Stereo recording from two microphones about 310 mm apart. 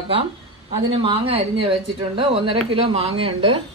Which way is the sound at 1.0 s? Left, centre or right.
Centre.